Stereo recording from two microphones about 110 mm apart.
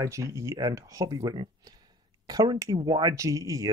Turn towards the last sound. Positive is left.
turn(degrees=-30)  # may be behind; listen again after turning